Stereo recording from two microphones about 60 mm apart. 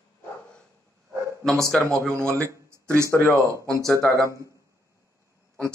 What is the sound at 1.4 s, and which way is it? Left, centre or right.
Speech, centre.